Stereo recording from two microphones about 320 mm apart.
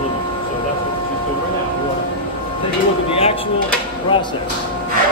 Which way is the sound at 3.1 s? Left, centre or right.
Centre.